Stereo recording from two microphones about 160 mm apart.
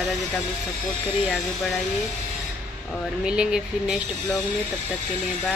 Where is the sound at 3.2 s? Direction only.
5° right (ahead or behind).